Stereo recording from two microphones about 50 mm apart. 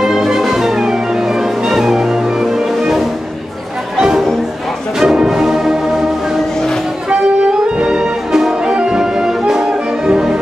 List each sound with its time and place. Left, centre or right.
0.0 s music: centre
5.0 s music: centre
7.1 s music: right